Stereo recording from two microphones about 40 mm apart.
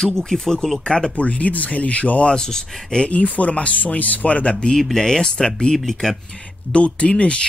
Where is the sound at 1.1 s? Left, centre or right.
Left.